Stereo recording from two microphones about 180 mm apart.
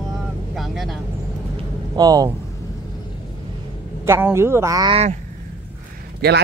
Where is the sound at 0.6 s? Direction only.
Centre (ahead or behind).